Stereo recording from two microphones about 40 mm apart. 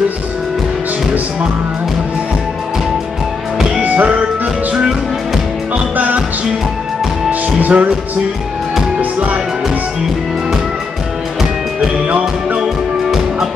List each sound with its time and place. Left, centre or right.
3.8 s music: right
5.9 s music: right
7.2 s music: right
12.1 s music: right
13.0 s music: centre